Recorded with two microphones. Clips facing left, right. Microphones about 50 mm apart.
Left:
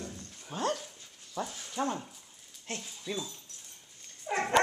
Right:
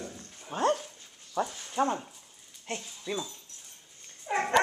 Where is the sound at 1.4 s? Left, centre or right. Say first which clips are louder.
Right 6 dB; centre.